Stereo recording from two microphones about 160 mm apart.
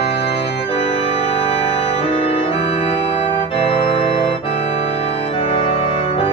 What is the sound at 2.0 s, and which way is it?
Organ, 35° left (ahead or behind).